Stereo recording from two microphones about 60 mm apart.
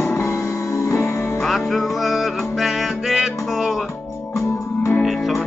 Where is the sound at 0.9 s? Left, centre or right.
Left.